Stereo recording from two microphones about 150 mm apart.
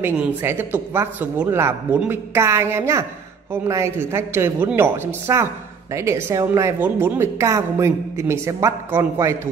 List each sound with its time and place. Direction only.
0.0 s a woman's voice: 15° right (ahead or behind)